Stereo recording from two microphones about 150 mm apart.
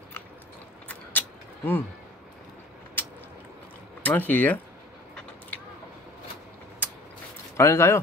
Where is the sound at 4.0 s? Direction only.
10° left (ahead or behind).